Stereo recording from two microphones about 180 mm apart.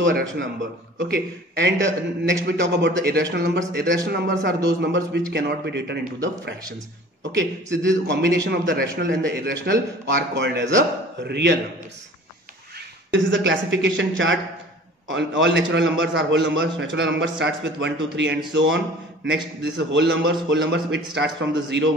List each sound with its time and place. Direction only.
0.0 s speech: 90° right
0.9 s a man's voice: 65° right (ahead or behind); by 2.3 s 90° right
2.4 s speech: 75° right (ahead or behind)
7.8 s a man's voice: 90° right
8.5 s speech: 70° right (ahead or behind)
8.9 s speech: 85° right
13.1 s a man's voice: 90° right
18.5 s speech: 90° right
19.9 s a man's voice: 85° right